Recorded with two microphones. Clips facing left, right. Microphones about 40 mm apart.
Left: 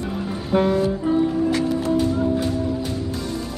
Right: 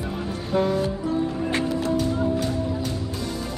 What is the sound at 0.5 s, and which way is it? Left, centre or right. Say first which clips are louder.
Music: left 4 dB; left.